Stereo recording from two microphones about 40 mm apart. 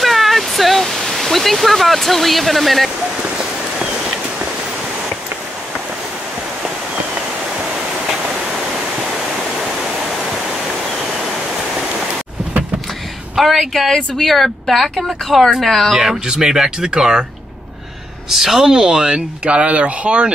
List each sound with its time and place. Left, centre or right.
0.0 s speech: centre
9.6 s waterfall: centre
13.4 s speech: centre
13.9 s speech: centre
14.3 s speech: centre
15.9 s speech: centre
18.3 s speech: centre
18.7 s speech: right